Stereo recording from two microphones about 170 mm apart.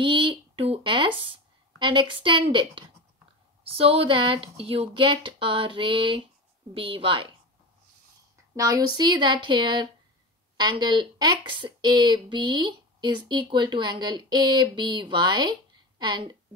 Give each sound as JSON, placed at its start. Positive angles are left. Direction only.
{"t": 0.0, "sound": "a woman's voice", "side_deg": -30}
{"t": 8.5, "sound": "speech", "side_deg": -20}